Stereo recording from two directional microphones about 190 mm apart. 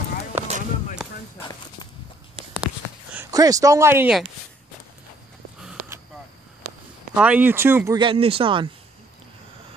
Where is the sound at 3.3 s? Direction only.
20° right (ahead or behind).